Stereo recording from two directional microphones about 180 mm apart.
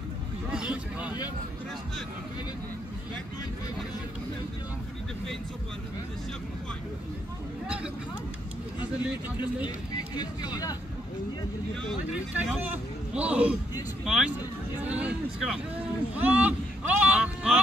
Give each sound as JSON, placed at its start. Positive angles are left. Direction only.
{"t": 0.6, "sound": "vehicle", "side_deg": -5}
{"t": 7.6, "sound": "speech", "side_deg": -5}
{"t": 10.1, "sound": "speech", "side_deg": 25}
{"t": 12.4, "sound": "speech", "side_deg": -5}